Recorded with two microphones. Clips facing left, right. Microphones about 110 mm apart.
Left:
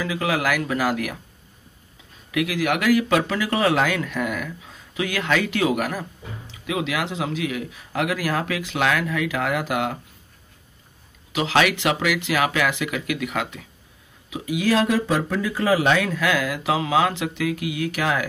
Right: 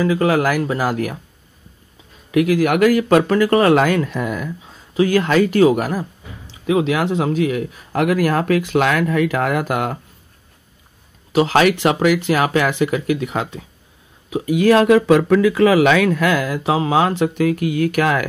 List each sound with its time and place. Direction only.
0.0 s speech: 45° right (ahead or behind)
2.3 s speech: 45° right (ahead or behind)
11.3 s speech: 40° right (ahead or behind)
14.3 s speech: 45° right (ahead or behind)